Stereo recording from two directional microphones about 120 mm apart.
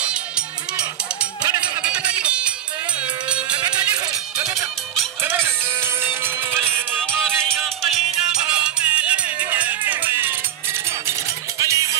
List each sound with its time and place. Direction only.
1.8 s music: 10° right (ahead or behind)
5.2 s music: 20° right (ahead or behind)
7.8 s music: 5° right (ahead or behind)
11.6 s music: 25° right (ahead or behind)